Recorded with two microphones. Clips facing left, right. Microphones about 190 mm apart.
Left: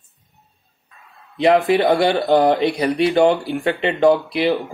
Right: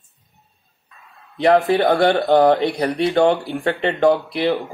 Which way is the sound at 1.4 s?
15° left (ahead or behind).